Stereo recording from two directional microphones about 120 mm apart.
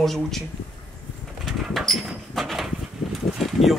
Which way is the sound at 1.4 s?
Centre (ahead or behind).